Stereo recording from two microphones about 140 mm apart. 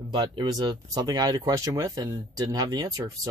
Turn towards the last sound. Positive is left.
turn(degrees=-25)  # may be behind; listen again after turning